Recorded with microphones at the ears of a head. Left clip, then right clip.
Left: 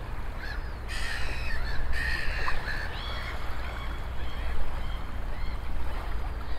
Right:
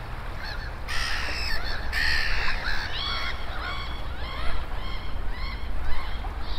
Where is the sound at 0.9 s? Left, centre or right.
Right.